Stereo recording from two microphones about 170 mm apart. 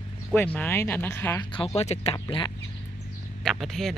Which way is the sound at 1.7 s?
40° left (ahead or behind).